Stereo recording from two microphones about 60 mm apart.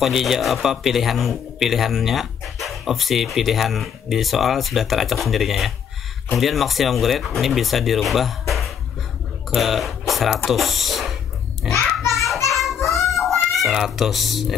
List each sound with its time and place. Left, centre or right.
0.0 s a child's voice: centre
12.1 s child singing: centre
13.6 s speech: centre